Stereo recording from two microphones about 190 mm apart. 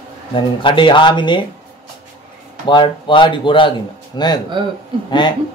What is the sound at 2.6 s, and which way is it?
A man's voice, 25° left (ahead or behind).